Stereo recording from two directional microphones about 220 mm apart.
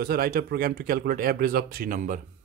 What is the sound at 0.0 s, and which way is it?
Speech, 40° right (ahead or behind).